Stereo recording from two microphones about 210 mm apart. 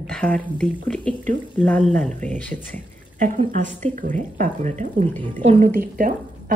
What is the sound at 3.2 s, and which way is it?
Speech, 40° right (ahead or behind).